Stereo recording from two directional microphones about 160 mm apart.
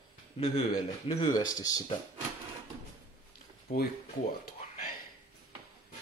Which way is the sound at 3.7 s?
40° left (ahead or behind).